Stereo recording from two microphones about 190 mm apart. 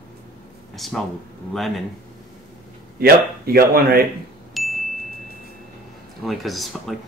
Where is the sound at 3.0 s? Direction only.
55° right (ahead or behind).